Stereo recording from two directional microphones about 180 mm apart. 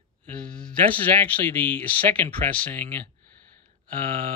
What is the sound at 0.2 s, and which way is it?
A man's voice, 5° left (ahead or behind).